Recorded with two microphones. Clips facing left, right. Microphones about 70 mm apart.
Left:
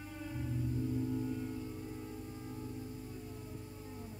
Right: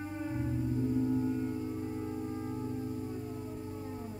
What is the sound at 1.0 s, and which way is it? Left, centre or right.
Music, right.